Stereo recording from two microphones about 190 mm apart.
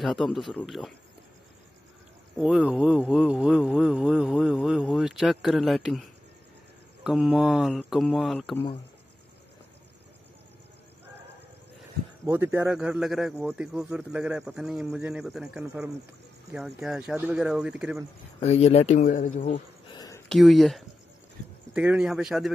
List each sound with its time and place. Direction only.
0.0 s speech: centre (ahead or behind)
2.3 s speech: 5° right (ahead or behind)
12.3 s speech: 15° right (ahead or behind)
18.5 s speech: 35° left (ahead or behind)
19.9 s a sound: 20° left (ahead or behind)
20.2 s speech: centre (ahead or behind)